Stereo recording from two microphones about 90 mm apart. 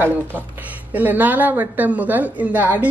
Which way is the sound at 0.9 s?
20° right (ahead or behind).